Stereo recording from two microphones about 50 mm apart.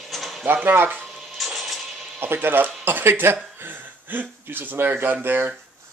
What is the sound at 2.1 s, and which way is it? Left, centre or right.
Speech, right.